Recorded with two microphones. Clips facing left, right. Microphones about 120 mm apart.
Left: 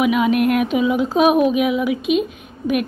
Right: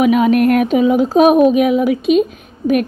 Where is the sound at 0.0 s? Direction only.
40° right (ahead or behind).